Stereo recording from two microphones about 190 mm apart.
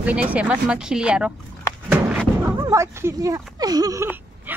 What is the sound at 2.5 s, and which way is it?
Speech, 15° right (ahead or behind).